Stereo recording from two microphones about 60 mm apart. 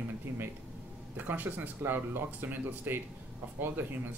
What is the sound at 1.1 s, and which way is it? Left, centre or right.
Speech, right.